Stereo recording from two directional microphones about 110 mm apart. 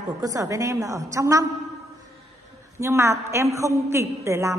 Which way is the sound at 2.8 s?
25° right (ahead or behind).